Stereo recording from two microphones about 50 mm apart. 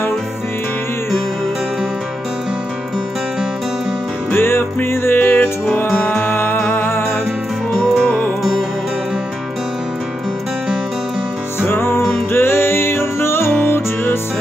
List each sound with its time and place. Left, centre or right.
4.3 s music: left
11.7 s music: left